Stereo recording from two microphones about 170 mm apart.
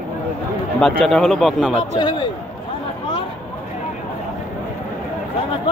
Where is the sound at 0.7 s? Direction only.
5° left (ahead or behind).